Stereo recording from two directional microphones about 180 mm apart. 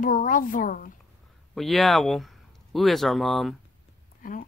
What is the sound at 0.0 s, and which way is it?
Speech, 50° left (ahead or behind).